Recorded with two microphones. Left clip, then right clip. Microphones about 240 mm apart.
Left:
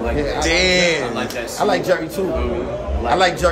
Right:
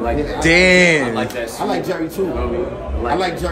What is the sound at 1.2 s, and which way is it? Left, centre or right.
Speech, centre.